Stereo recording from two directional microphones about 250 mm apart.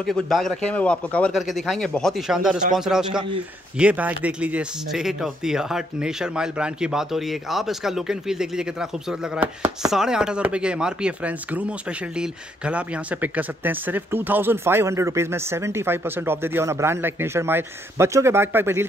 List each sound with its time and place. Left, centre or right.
0.0 s speech: centre